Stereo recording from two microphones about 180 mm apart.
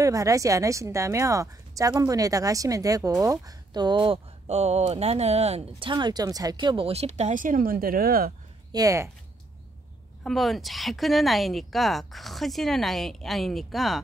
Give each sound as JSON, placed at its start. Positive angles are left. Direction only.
{"t": 0.0, "sound": "a woman's voice", "side_deg": -20}
{"t": 8.7, "sound": "speech", "side_deg": -15}
{"t": 10.2, "sound": "speech", "side_deg": 0}